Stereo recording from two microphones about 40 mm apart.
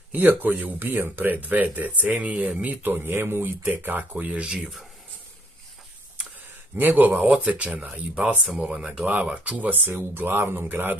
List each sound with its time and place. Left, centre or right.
0.1 s speech: right
0.7 s speech: right
2.6 s speech: right
3.1 s speech: right
3.6 s speech: right
4.1 s speech: right
4.6 s speech: centre
6.8 s speech: right
7.2 s speech: right
9.0 s speech: right
9.9 s speech: right